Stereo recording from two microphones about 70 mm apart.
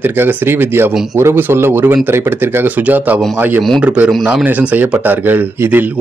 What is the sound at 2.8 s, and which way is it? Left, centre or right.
A man's voice, right.